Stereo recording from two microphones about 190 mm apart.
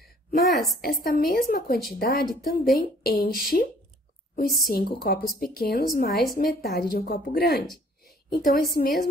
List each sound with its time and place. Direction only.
0.7 s a woman's voice: 50° left (ahead or behind)
8.0 s a sound: 50° left (ahead or behind)
8.7 s a woman's voice: 50° left (ahead or behind)